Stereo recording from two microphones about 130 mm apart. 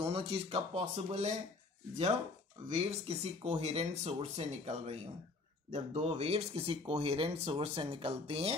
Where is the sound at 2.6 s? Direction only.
50° right (ahead or behind).